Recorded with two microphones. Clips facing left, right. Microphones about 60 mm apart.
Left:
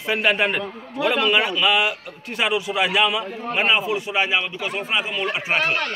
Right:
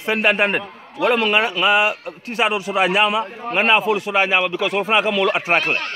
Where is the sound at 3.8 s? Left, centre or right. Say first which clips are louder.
Right 4 dB; right.